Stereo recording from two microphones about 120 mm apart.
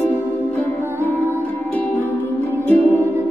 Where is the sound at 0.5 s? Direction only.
15° left (ahead or behind).